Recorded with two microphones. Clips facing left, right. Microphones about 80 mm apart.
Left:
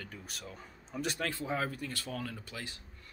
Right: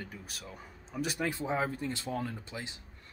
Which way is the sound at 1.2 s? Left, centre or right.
Right.